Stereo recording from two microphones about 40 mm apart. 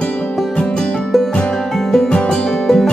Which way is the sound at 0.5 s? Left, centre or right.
Centre.